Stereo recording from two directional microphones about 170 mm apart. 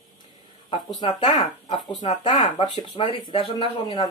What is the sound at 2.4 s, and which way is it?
Speech, 25° left (ahead or behind).